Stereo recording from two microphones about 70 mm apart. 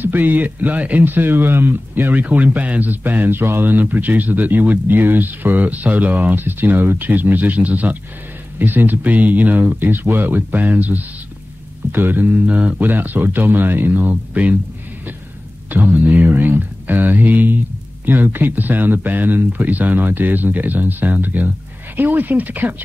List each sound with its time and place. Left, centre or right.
0.0 s speech: right
15.7 s speech: right